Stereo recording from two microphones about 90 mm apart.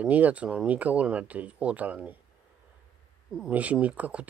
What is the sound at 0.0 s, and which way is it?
Speech, 15° right (ahead or behind).